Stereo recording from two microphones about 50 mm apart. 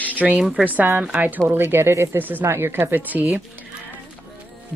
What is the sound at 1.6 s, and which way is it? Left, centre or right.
Speech, right.